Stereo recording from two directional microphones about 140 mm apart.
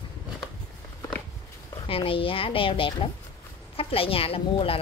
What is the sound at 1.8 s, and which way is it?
A woman's voice, 40° left (ahead or behind).